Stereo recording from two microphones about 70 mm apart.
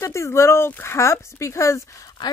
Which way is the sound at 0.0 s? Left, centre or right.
Left.